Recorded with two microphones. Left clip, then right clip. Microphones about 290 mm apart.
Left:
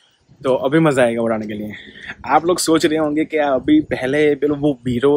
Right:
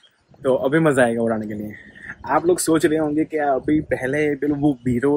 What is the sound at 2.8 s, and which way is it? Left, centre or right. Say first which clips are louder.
Speech: left 2 dB; centre.